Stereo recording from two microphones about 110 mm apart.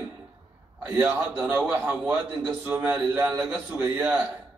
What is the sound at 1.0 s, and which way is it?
A man's voice, 15° right (ahead or behind).